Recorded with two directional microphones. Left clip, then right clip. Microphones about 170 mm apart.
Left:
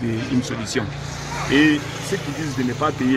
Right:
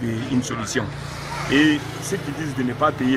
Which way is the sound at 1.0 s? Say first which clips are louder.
Left 1 dB; 45° right (ahead or behind).